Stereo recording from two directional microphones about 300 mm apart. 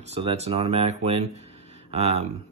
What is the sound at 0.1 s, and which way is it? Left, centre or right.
Speech, right.